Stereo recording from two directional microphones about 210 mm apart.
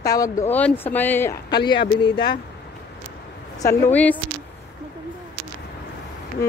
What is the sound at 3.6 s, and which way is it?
Speech, 10° left (ahead or behind).